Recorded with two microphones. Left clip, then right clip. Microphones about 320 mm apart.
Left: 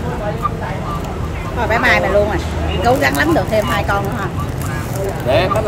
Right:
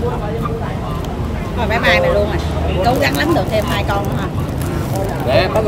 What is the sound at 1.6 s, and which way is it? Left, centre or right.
Speech, centre.